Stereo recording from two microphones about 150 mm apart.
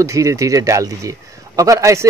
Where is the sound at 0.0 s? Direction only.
20° right (ahead or behind).